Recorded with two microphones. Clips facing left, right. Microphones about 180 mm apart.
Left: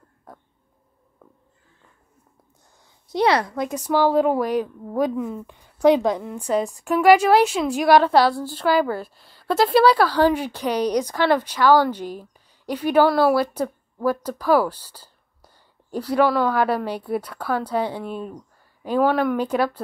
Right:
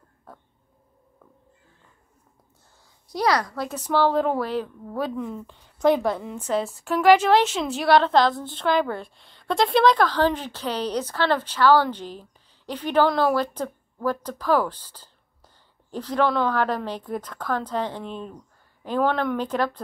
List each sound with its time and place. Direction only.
3.1 s speech: 25° left (ahead or behind)
3.6 s a woman's voice: 10° left (ahead or behind)